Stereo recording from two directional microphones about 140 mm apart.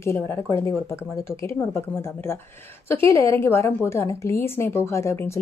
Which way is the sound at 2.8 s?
20° left (ahead or behind).